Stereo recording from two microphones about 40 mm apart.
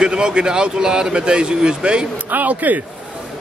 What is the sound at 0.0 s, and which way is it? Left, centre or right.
A man's voice, right.